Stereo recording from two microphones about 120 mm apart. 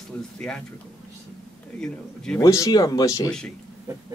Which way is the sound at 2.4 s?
30° left (ahead or behind).